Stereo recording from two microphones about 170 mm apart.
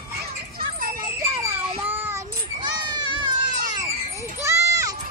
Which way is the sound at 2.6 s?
25° right (ahead or behind).